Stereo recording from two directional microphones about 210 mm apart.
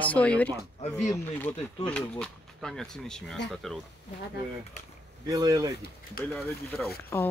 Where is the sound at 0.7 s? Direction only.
30° left (ahead or behind).